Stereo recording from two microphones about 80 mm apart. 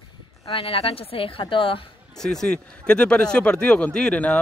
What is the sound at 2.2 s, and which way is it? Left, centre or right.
Speech, centre.